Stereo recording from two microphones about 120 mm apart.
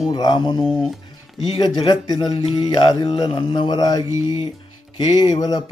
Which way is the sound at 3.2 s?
40° left (ahead or behind).